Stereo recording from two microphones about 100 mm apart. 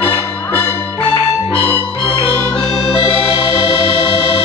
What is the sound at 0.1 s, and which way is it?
Music, 20° left (ahead or behind).